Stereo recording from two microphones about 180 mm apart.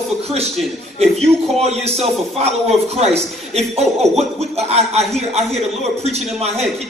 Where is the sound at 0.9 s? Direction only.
35° right (ahead or behind).